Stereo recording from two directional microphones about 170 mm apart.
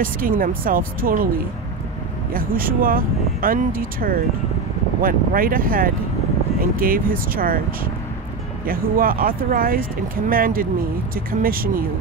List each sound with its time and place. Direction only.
0.0 s speech: 55° right (ahead or behind)
2.3 s speech: 55° right (ahead or behind)